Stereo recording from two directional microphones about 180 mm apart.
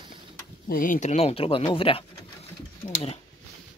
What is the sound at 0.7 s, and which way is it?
Speech, 50° left (ahead or behind).